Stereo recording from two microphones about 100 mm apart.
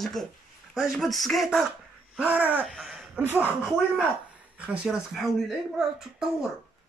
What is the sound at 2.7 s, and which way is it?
Speech, 5° right (ahead or behind).